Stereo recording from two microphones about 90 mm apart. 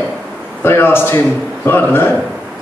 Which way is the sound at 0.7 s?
25° left (ahead or behind).